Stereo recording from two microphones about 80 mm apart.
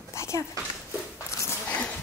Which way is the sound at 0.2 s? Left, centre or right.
Left.